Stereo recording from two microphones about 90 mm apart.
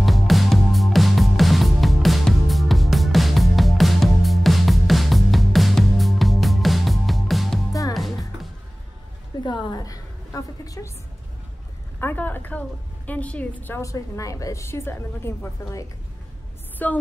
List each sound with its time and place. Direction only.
0.0 s music: centre (ahead or behind)
9.4 s a sound: 55° left (ahead or behind); by 10.9 s 40° left (ahead or behind)
12.0 s a woman's voice: 20° left (ahead or behind)
13.7 s a woman's voice: 35° left (ahead or behind)
16.7 s speech: 15° left (ahead or behind)